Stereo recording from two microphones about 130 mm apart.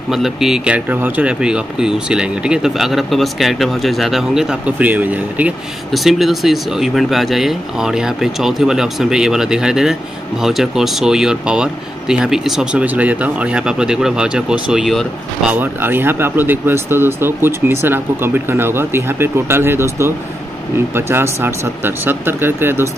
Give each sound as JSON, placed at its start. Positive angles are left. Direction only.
{"t": 0.1, "sound": "speech", "side_deg": -5}
{"t": 5.9, "sound": "speech", "side_deg": 0}
{"t": 15.5, "sound": "speech", "side_deg": -15}